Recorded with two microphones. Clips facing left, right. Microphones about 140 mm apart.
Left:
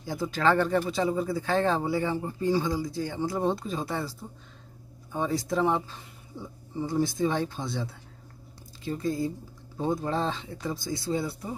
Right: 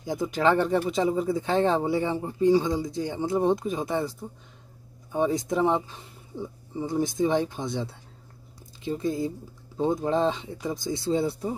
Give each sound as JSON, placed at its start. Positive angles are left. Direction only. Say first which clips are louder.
{"t": 0.0, "sound": "speech", "louder": "right 2 dB", "side_deg": -20}